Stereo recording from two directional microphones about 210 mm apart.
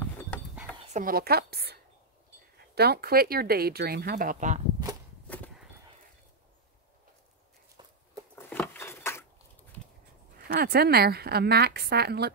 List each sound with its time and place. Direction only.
0.9 s speech: 45° right (ahead or behind)
8.4 s keys jangling: 10° left (ahead or behind)
10.5 s speech: 45° right (ahead or behind)